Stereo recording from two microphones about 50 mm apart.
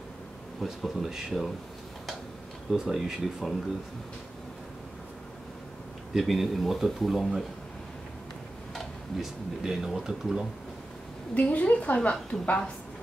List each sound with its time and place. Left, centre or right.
0.6 s speech: centre
2.7 s speech: centre
6.1 s speech: centre
9.2 s speech: centre
11.3 s a woman's voice: left